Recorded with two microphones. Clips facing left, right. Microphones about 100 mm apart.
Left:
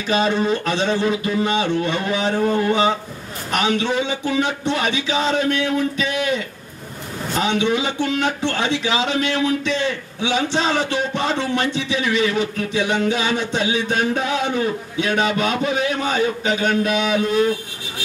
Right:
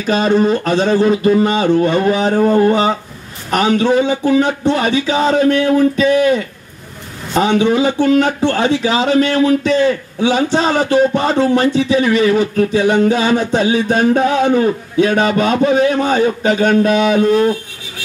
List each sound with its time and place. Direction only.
0.0 s speech: 40° right (ahead or behind)